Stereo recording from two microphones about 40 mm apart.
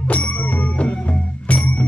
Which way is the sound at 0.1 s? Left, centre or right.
Left.